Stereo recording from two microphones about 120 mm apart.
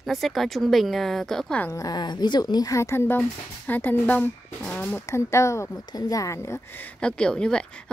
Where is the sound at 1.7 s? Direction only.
35° left (ahead or behind).